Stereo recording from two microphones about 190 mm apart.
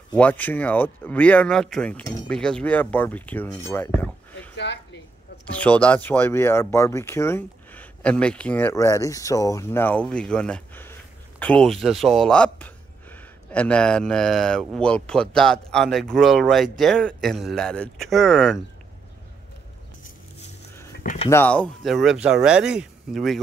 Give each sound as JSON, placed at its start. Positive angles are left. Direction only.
{"t": 0.1, "sound": "speech", "side_deg": 5}
{"t": 4.6, "sound": "a sound", "side_deg": 65}
{"t": 5.5, "sound": "speech", "side_deg": 5}
{"t": 21.0, "sound": "speech", "side_deg": 45}
{"t": 21.3, "sound": "speech", "side_deg": 10}